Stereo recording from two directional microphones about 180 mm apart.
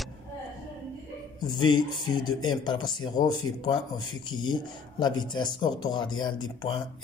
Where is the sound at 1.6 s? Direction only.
25° left (ahead or behind).